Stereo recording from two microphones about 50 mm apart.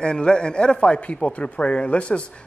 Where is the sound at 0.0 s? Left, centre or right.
Centre.